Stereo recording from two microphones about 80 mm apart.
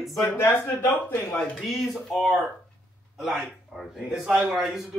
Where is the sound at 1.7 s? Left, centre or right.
Centre.